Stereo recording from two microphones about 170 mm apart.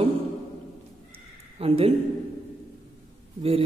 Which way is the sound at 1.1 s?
35° right (ahead or behind).